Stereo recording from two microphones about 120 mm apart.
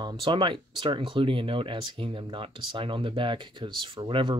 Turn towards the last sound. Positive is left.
turn(degrees=-45)  # may be behind; listen again after turning